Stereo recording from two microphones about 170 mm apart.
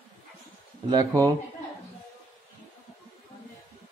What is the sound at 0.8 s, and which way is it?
Speech, 20° right (ahead or behind).